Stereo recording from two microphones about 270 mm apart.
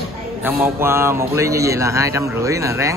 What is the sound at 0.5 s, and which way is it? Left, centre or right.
Speech, centre.